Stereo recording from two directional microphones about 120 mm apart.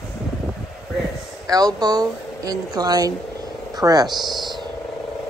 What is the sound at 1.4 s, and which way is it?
Speech, 30° right (ahead or behind).